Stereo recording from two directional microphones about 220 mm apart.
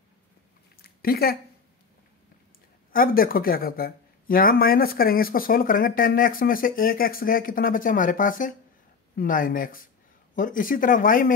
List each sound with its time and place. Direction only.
0.8 s speech: 45° left (ahead or behind)
2.9 s speech: 40° left (ahead or behind)